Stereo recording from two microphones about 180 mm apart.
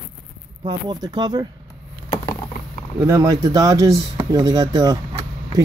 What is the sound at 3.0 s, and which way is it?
Speech, 20° right (ahead or behind).